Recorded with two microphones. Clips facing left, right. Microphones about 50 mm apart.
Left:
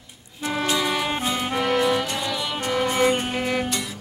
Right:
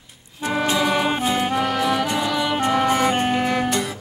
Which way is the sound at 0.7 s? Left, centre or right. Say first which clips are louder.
Right 4 dB; right.